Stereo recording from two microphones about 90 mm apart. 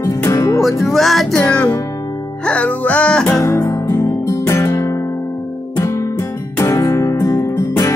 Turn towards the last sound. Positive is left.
turn(degrees=35)  # may be behind; listen again after turning